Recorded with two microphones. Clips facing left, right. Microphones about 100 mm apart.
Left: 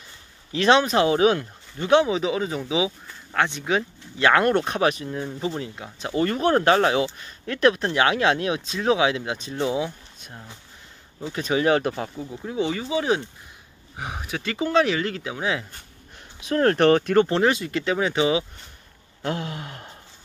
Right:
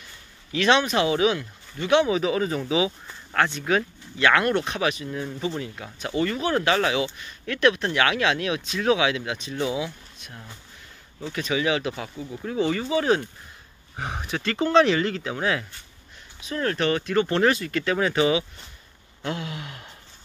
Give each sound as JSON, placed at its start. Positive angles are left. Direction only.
{"t": 0.5, "sound": "speech", "side_deg": 35}
{"t": 2.0, "sound": "speech", "side_deg": 20}
{"t": 4.2, "sound": "speech", "side_deg": 35}
{"t": 6.2, "sound": "speech", "side_deg": 40}
{"t": 11.4, "sound": "speech", "side_deg": 40}
{"t": 12.3, "sound": "speech", "side_deg": 15}
{"t": 16.3, "sound": "speech", "side_deg": 65}
{"t": 17.3, "sound": "speech", "side_deg": 20}
{"t": 19.2, "sound": "speech", "side_deg": 40}